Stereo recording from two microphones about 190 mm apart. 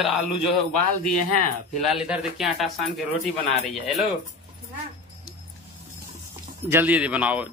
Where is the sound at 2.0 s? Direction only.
5° right (ahead or behind).